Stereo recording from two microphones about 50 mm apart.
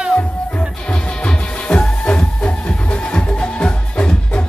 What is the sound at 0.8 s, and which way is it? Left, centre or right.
Music, centre.